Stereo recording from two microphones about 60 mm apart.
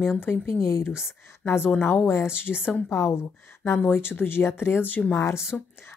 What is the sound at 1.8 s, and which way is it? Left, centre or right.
A woman's voice, left.